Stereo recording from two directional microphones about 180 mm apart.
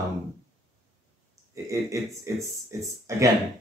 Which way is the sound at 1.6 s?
15° right (ahead or behind).